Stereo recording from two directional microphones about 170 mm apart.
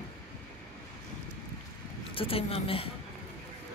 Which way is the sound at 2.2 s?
35° left (ahead or behind).